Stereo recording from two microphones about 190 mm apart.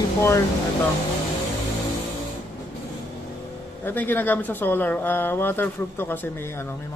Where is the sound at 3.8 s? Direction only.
10° left (ahead or behind).